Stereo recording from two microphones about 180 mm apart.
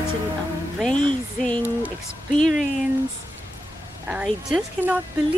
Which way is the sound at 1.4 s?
10° left (ahead or behind).